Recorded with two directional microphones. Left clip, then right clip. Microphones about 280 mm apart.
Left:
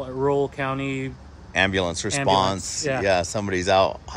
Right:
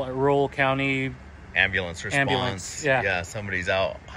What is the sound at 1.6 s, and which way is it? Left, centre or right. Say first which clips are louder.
Speech: left 2 dB; centre.